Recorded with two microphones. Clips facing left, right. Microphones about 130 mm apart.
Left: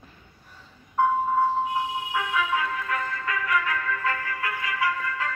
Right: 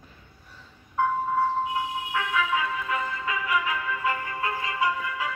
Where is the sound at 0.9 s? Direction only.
10° left (ahead or behind).